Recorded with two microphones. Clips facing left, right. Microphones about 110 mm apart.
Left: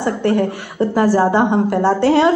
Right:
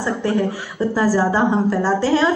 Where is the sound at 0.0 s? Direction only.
60° left (ahead or behind).